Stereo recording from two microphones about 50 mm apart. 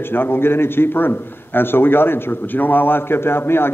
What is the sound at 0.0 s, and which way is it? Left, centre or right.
A man's voice, left.